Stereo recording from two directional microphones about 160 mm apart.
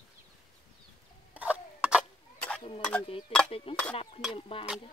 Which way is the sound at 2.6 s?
35° left (ahead or behind).